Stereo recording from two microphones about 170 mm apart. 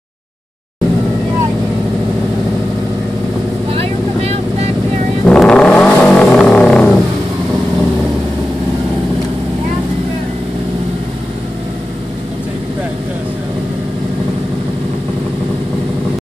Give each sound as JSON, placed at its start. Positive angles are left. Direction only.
{"t": 3.7, "sound": "vehicle", "side_deg": -35}
{"t": 5.2, "sound": "vehicle", "side_deg": 5}